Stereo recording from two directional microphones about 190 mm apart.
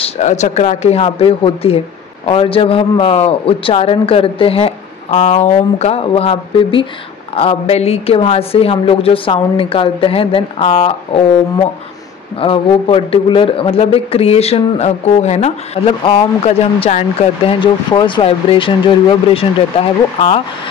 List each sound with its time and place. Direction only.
0.0 s a woman's voice: 40° left (ahead or behind)
12.4 s a woman's voice: 30° left (ahead or behind)